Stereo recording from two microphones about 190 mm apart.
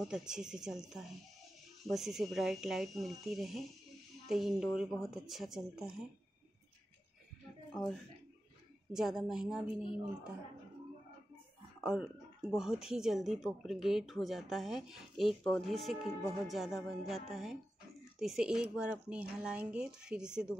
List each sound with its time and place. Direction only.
0.0 s speech: 5° right (ahead or behind)
8.9 s speech: centre (ahead or behind)
11.8 s speech: 5° right (ahead or behind)